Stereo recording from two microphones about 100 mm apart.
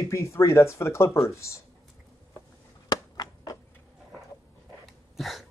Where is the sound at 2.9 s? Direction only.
40° left (ahead or behind).